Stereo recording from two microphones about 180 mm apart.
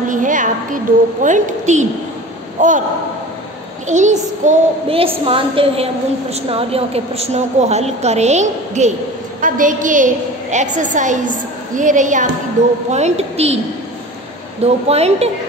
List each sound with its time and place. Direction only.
0.1 s a woman's voice: 45° right (ahead or behind)
3.8 s a woman's voice: 40° right (ahead or behind)
14.6 s a woman's voice: 35° right (ahead or behind)